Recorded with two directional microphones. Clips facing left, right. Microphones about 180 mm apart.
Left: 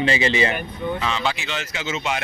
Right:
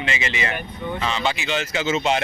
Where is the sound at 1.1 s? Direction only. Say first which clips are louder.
Even; centre (ahead or behind).